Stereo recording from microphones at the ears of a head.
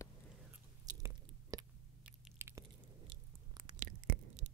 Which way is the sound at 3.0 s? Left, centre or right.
Right.